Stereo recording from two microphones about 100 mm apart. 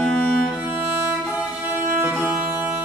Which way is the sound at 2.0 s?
10° right (ahead or behind).